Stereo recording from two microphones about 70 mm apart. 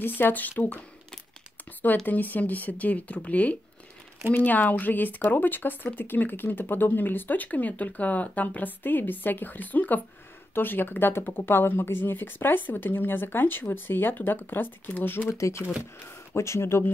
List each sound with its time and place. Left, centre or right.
0.0 s speech: left
2.0 s speech: left
15.3 s speech: left